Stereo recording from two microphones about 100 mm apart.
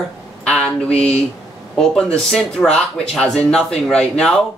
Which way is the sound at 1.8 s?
5° left (ahead or behind).